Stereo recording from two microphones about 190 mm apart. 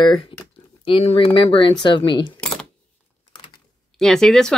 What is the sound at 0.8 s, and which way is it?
Speech, 30° left (ahead or behind).